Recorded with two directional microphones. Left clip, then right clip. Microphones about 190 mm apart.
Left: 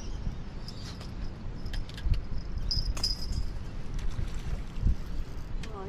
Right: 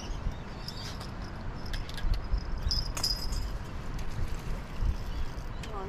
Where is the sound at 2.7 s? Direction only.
Centre (ahead or behind).